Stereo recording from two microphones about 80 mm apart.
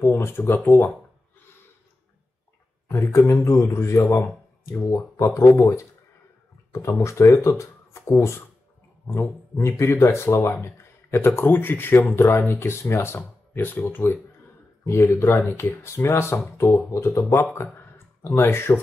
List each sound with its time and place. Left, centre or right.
0.0 s speech: left
2.9 s speech: left
16.9 s speech: left
17.7 s a sound: left